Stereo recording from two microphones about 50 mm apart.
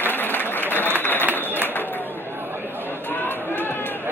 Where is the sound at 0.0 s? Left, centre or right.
Left.